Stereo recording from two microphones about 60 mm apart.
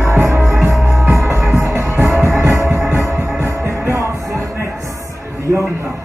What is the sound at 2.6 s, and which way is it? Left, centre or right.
Music, centre.